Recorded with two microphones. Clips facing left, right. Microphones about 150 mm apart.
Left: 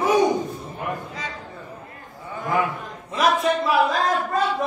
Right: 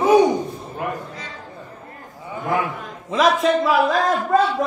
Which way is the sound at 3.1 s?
90° right.